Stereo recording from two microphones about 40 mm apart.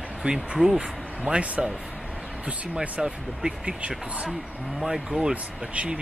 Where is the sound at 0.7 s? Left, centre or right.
Right.